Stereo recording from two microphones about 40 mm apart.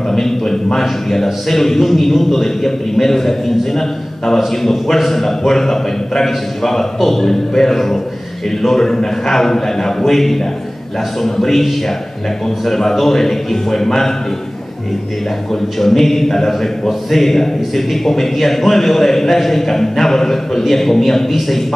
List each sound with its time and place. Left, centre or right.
0.1 s a man's voice: centre
15.8 s a man's voice: centre